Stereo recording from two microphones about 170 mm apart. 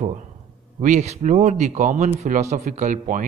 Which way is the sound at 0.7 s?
40° right (ahead or behind).